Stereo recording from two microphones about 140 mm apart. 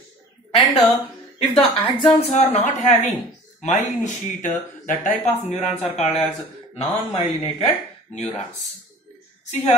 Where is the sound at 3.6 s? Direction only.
60° left (ahead or behind).